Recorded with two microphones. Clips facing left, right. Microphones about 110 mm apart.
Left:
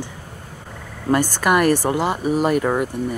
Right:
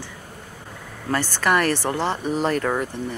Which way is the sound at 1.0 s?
15° left (ahead or behind).